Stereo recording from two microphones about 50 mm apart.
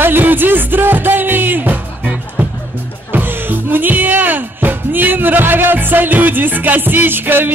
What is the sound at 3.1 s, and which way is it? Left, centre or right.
Music, right.